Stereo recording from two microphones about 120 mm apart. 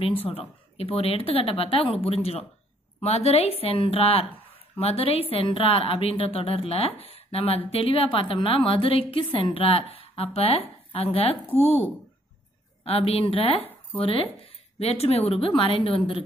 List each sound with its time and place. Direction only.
0.3 s a woman's voice: 50° left (ahead or behind)
11.4 s speech: 15° left (ahead or behind)
12.8 s a woman's voice: 55° left (ahead or behind)